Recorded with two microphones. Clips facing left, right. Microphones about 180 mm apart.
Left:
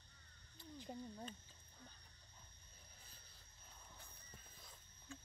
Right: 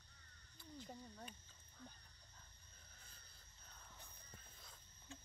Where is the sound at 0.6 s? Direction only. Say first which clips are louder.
Left 4 dB; 20° left (ahead or behind).